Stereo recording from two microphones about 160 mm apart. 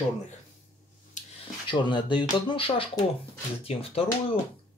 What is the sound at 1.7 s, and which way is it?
Speech, 30° left (ahead or behind).